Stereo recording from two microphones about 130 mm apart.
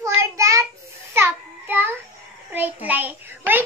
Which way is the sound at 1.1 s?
15° right (ahead or behind).